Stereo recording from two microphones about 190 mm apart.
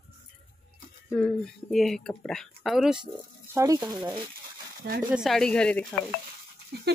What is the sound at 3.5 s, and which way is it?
Speech, 20° right (ahead or behind).